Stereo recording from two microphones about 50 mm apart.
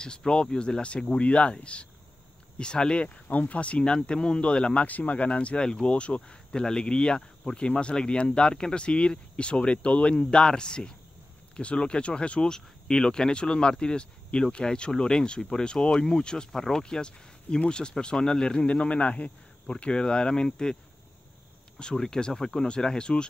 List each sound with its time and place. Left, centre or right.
0.0 s speech: centre
3.3 s speech: left
4.8 s speech: left; by 20.7 s centre
21.7 s speech: centre